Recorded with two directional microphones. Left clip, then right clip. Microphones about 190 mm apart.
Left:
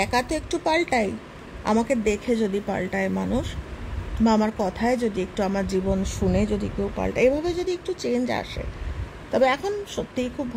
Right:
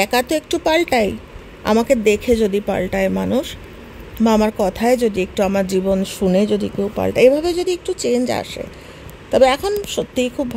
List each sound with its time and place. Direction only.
0.0 s a woman's voice: 30° right (ahead or behind)